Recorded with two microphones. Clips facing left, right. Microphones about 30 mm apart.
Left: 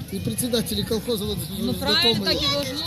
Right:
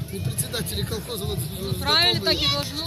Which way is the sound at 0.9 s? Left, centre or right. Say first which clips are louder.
Left 5 dB; left.